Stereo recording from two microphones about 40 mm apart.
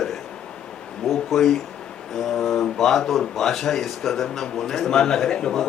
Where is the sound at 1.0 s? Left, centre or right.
Centre.